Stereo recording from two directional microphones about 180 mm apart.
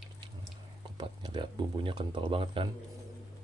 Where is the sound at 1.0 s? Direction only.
25° right (ahead or behind).